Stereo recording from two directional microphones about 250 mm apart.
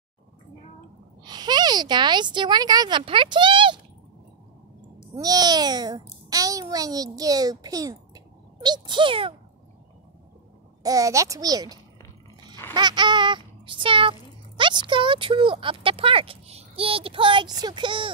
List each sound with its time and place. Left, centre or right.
1.2 s speech: centre
5.1 s a child's voice: centre
10.8 s a child's voice: centre